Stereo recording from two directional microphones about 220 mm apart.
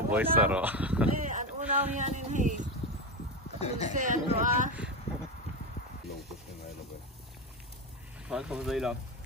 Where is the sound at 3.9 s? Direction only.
35° right (ahead or behind).